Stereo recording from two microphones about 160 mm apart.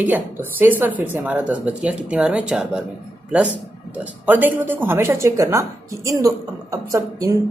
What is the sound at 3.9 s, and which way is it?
Speech, 10° right (ahead or behind).